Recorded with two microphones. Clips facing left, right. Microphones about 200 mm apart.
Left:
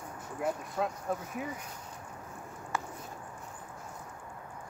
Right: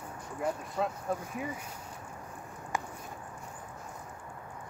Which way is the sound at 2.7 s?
15° right (ahead or behind).